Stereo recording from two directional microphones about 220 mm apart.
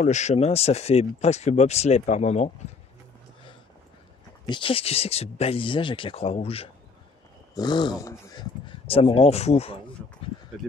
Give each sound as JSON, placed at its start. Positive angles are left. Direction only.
{"t": 0.0, "sound": "speech", "side_deg": 30}
{"t": 4.5, "sound": "speech", "side_deg": 25}